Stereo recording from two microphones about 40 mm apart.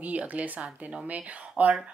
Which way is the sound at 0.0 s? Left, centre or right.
Right.